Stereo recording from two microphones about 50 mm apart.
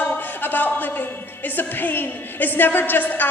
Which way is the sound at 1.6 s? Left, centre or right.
Left.